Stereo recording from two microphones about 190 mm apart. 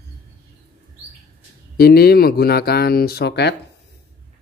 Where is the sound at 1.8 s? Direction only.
55° left (ahead or behind).